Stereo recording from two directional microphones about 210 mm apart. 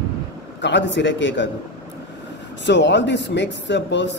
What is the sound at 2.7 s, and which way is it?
A man's voice, 55° left (ahead or behind).